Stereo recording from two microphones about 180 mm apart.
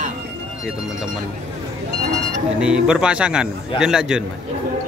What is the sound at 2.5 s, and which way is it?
A man's voice, 5° right (ahead or behind).